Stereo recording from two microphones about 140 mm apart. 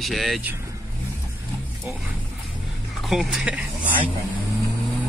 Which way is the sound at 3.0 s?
Centre (ahead or behind).